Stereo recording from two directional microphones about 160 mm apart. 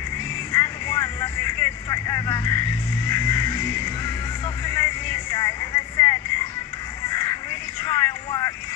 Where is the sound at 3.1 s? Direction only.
20° left (ahead or behind).